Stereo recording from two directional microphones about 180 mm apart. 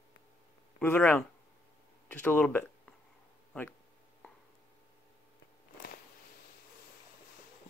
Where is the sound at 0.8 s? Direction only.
10° left (ahead or behind).